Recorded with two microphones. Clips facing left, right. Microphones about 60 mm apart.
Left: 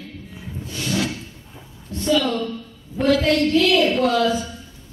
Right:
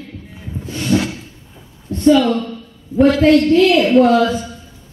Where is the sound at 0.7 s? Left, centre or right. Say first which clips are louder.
Right 6 dB; right.